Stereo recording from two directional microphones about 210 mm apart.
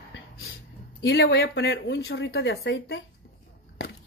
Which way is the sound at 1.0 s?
55° left (ahead or behind).